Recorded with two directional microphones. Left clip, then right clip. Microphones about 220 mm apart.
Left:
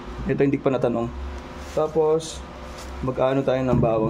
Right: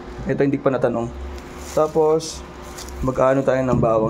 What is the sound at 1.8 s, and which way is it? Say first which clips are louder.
Speech: right 4 dB; 25° right (ahead or behind).